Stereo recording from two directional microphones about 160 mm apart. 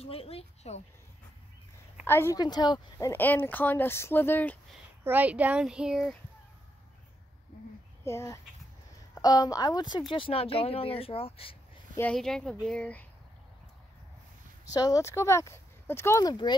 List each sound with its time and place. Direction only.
0.0 s speech: 40° left (ahead or behind)
2.0 s speech: 15° left (ahead or behind)
2.4 s a woman's voice: 25° left (ahead or behind)
3.1 s speech: 10° left (ahead or behind)
5.0 s speech: 10° right (ahead or behind)
8.0 s a child's voice: 15° left (ahead or behind); by 11.8 s 35° left (ahead or behind)
12.0 s speech: 5° left (ahead or behind)
14.7 s speech: 20° left (ahead or behind)